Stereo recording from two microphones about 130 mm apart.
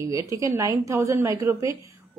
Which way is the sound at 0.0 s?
25° right (ahead or behind).